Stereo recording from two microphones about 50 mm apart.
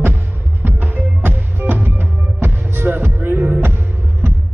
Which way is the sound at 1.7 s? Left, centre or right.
Right.